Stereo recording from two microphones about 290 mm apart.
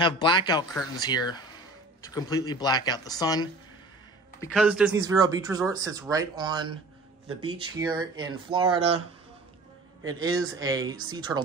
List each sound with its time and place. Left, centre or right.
0.0 s speech: centre
4.5 s speech: centre
10.5 s speech: centre